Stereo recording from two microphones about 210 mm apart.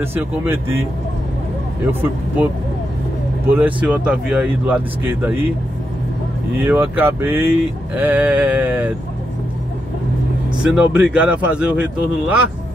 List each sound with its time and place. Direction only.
0.0 s speech: 10° right (ahead or behind)
1.9 s speech: 10° right (ahead or behind)
3.4 s speech: 10° right (ahead or behind)
6.6 s speech: 10° right (ahead or behind)
10.6 s speech: 5° right (ahead or behind)